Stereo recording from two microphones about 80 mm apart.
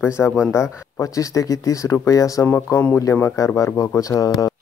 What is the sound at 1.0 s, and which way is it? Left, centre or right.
Speech, left.